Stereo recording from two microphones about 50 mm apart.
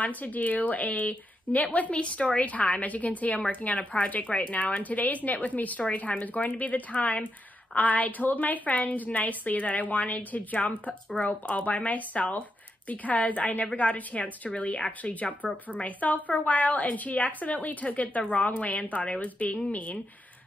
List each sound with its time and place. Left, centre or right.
0.0 s a woman's voice: left